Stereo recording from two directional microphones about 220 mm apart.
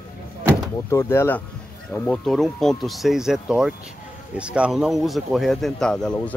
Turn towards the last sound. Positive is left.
turn(degrees=5)  # may be behind; listen again after turning